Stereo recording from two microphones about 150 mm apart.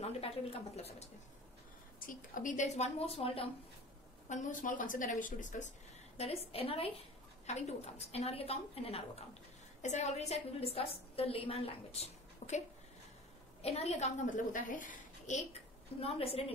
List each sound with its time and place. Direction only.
0.0 s a woman's voice: 40° left (ahead or behind)
2.0 s a woman's voice: 65° left (ahead or behind); by 3.4 s 40° left (ahead or behind)
4.3 s a woman's voice: 60° left (ahead or behind)
6.1 s a woman's voice: 45° left (ahead or behind)
16.0 s a woman's voice: 40° left (ahead or behind)